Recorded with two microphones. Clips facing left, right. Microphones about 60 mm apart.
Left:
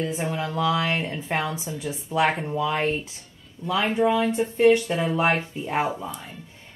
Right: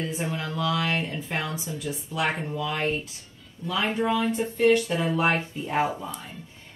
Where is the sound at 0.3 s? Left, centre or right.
Left.